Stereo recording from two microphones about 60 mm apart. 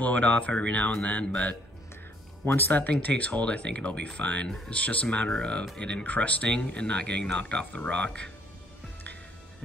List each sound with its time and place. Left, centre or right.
0.0 s speech: left
2.4 s speech: left